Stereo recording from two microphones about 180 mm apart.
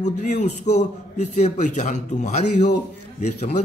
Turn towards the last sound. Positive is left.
turn(degrees=40)  # may be behind; listen again after turning